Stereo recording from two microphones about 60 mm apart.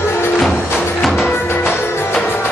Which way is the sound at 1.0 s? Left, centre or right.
Centre.